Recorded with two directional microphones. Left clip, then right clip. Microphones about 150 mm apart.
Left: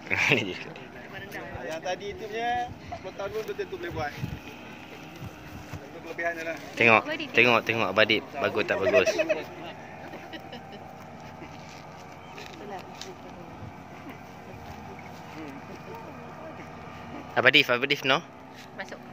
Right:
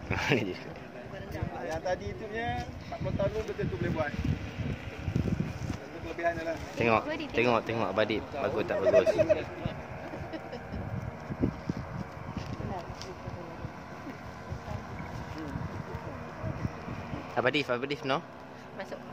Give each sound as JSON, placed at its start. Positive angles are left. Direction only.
{"t": 0.1, "sound": "speech", "side_deg": -5}
{"t": 6.1, "sound": "speech", "side_deg": 0}
{"t": 6.8, "sound": "speech", "side_deg": 25}
{"t": 7.3, "sound": "speech", "side_deg": 15}
{"t": 17.4, "sound": "speech", "side_deg": 15}